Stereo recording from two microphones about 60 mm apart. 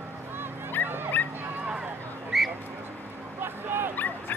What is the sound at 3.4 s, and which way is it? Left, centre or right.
Dog, right.